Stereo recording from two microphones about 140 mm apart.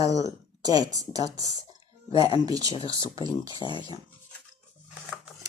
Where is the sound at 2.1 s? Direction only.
30° left (ahead or behind).